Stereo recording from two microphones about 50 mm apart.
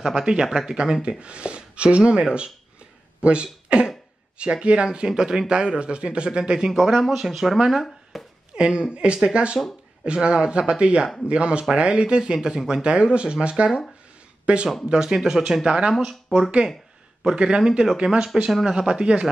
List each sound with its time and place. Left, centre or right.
0.0 s a man's voice: centre
6.7 s speech: centre
8.1 s a sound: centre
8.5 s a man's voice: centre